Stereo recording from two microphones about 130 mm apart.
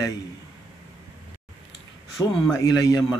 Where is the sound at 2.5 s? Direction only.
25° left (ahead or behind).